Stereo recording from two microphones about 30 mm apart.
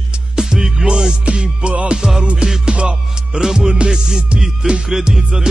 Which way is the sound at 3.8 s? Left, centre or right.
Right.